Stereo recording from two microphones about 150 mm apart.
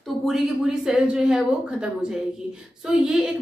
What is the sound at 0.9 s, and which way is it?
A woman's voice, 5° right (ahead or behind).